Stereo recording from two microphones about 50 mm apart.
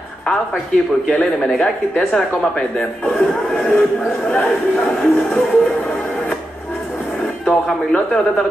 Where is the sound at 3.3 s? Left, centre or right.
Centre.